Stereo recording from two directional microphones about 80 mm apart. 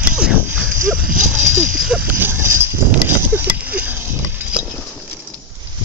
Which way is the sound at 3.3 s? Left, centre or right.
Right.